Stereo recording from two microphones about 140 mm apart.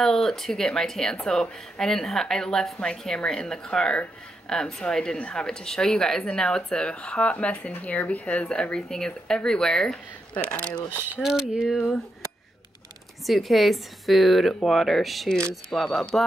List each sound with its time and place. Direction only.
0.0 s speech: centre (ahead or behind)
11.1 s speech: 5° right (ahead or behind)
13.3 s speech: centre (ahead or behind)